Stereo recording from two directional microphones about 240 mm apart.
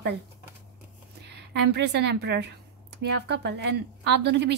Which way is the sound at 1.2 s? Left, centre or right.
Right.